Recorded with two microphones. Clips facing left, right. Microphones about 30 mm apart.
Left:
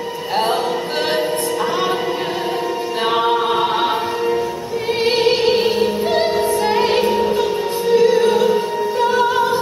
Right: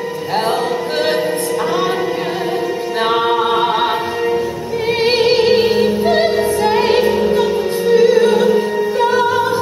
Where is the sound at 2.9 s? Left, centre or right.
Centre.